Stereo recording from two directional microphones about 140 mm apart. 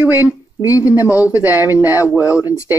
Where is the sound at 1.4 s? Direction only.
15° right (ahead or behind).